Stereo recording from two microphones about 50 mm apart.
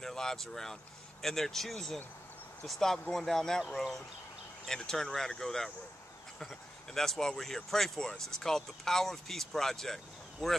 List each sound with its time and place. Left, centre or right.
0.0 s speech: centre
4.6 s speech: centre